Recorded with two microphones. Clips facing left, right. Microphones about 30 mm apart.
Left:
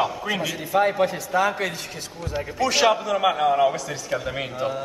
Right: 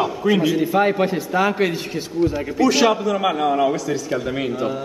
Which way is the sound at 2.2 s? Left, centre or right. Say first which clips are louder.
Right 17 dB; right.